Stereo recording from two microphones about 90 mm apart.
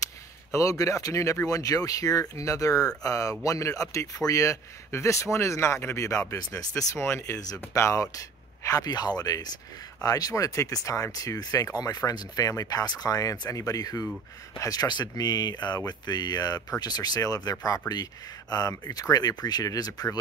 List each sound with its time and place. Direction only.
0.5 s speech: 35° left (ahead or behind)